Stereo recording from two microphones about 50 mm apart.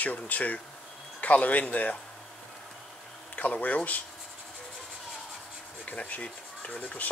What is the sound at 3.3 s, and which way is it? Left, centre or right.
Speech, left.